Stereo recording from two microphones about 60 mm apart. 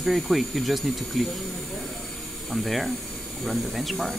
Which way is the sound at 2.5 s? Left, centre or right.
Centre.